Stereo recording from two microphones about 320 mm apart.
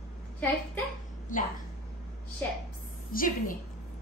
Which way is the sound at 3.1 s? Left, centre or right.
Left.